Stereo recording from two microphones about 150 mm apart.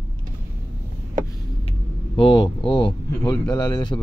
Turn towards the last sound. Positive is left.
turn(degrees=30)  # may be behind; listen again after turning